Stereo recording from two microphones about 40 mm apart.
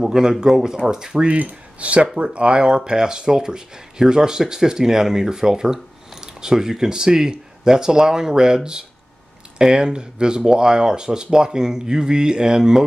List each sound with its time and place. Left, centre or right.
0.0 s speech: centre
1.2 s speech: right; by 8.5 s centre
9.6 s speech: centre